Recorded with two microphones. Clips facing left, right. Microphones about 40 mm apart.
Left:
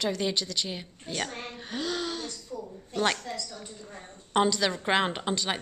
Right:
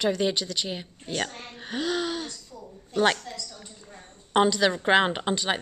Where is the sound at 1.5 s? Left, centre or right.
Centre.